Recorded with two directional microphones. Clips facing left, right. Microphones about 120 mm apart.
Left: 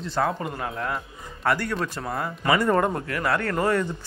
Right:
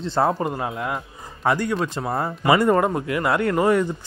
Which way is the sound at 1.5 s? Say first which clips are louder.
Right 3 dB; 15° right (ahead or behind).